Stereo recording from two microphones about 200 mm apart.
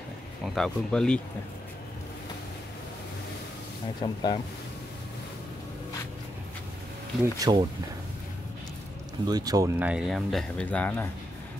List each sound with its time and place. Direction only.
0.6 s speech: 5° left (ahead or behind)
4.0 s speech: 20° left (ahead or behind)
7.3 s speech: 20° right (ahead or behind)
9.3 s speech: 20° right (ahead or behind); by 11.1 s 5° left (ahead or behind)